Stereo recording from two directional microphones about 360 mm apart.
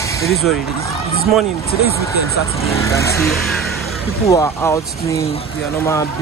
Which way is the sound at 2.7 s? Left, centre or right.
Centre.